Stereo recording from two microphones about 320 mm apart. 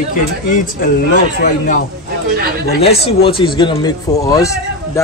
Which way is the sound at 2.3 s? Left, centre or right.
Right.